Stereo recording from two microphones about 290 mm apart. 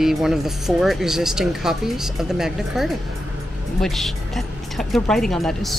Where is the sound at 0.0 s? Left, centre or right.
Centre.